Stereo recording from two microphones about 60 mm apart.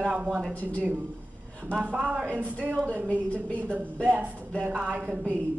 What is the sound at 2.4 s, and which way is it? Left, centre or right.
Speech, right.